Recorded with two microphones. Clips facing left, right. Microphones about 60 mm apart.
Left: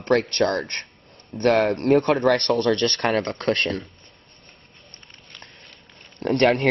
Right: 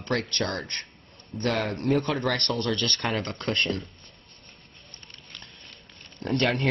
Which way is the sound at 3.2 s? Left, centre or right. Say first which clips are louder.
Left 5 dB; left.